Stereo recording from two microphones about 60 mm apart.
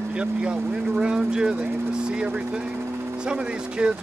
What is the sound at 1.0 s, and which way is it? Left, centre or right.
Speech, centre.